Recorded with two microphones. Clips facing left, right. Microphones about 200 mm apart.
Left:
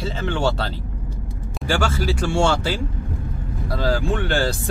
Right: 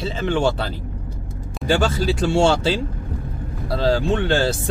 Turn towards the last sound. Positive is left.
turn(degrees=-25)  # may be behind; listen again after turning